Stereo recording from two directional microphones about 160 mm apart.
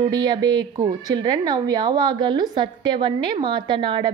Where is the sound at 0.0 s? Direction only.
25° right (ahead or behind).